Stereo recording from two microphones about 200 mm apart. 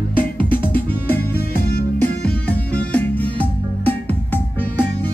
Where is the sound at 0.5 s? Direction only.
10° left (ahead or behind).